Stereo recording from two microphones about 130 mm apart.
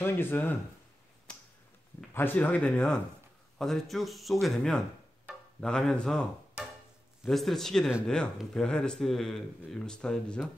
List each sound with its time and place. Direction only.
0.0 s speech: 15° left (ahead or behind)
2.1 s speech: 15° left (ahead or behind)
7.2 s speech: centre (ahead or behind)